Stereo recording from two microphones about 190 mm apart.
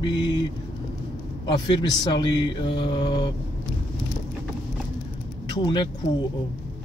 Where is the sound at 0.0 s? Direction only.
25° left (ahead or behind).